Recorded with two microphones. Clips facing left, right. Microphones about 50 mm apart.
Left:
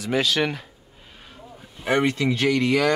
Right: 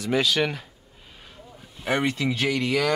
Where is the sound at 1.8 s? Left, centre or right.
Centre.